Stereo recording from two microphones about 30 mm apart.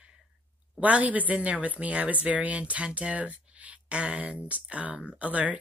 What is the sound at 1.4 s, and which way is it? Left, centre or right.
Speech, right.